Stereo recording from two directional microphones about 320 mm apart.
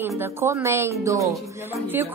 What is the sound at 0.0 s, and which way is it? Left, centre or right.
A woman's voice, centre.